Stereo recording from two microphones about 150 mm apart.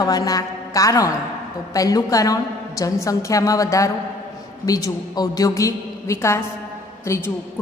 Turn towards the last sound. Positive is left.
turn(degrees=20)  # may be behind; listen again after turning